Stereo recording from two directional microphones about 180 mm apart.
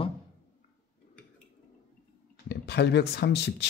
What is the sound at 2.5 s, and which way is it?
Speech, 65° left (ahead or behind).